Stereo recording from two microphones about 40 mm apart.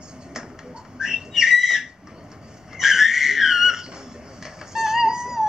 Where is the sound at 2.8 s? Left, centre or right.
Centre.